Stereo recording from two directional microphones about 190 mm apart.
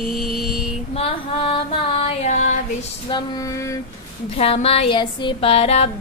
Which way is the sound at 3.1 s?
15° left (ahead or behind).